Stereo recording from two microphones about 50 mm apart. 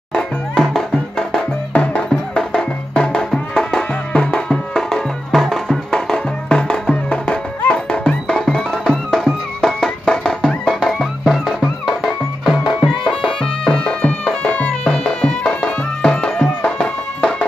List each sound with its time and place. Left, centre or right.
0.1 s music: centre
13.4 s music: centre
14.5 s music: left
14.9 s music: centre